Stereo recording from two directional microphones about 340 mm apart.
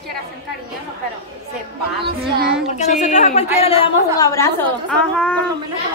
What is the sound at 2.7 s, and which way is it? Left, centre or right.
A woman's voice, left.